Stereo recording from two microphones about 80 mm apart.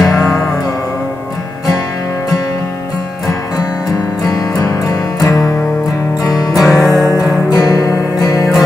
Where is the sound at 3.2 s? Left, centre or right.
Left.